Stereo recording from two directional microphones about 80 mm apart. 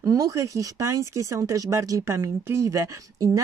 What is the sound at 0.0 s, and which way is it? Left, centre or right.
Speech, right.